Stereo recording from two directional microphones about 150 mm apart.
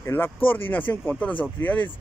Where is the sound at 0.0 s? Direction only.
15° left (ahead or behind).